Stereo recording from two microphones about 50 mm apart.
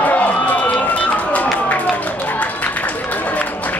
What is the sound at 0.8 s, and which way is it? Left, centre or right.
Run, left.